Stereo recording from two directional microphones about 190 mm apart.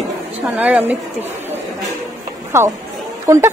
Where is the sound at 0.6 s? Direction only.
10° right (ahead or behind).